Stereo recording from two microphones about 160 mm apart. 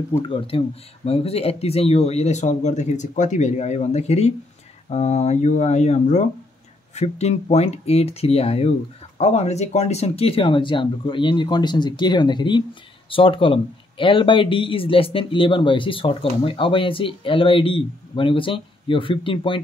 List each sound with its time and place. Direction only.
0.3 s speech: 35° left (ahead or behind)